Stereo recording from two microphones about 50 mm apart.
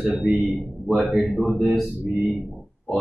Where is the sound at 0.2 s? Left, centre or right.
Centre.